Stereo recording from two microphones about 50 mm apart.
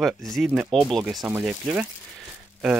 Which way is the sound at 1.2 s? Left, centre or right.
Centre.